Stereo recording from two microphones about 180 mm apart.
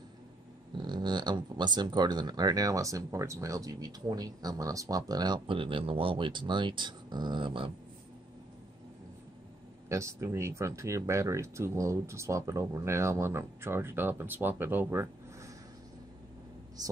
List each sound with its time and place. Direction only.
0.8 s speech: 25° right (ahead or behind)
9.8 s speech: 15° right (ahead or behind)
16.8 s speech: 20° right (ahead or behind)